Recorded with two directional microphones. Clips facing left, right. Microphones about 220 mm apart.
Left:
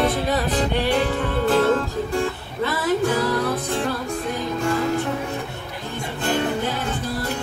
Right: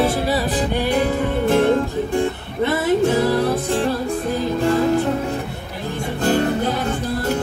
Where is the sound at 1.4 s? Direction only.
15° right (ahead or behind).